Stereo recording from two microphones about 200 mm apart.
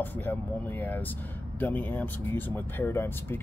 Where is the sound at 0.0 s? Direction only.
10° left (ahead or behind).